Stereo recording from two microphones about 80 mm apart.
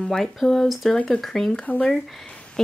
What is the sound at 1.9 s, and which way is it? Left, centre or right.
Speech, centre.